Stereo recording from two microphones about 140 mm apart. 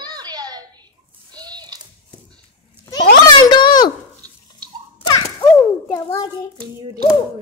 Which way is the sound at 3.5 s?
30° left (ahead or behind).